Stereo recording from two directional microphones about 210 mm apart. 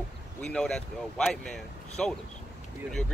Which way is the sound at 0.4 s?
5° left (ahead or behind).